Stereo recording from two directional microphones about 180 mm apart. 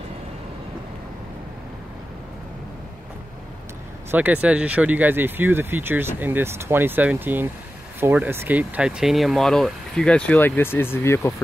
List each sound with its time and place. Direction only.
4.1 s speech: 10° right (ahead or behind); by 11.3 s 15° left (ahead or behind)